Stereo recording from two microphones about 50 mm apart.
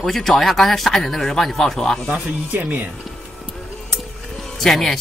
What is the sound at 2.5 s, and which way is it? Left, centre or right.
Speech, right.